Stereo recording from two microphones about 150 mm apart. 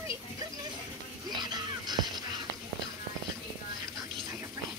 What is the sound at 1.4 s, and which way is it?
Music, 30° right (ahead or behind).